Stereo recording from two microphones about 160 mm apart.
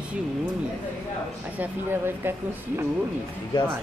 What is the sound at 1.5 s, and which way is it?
Speech, 15° right (ahead or behind).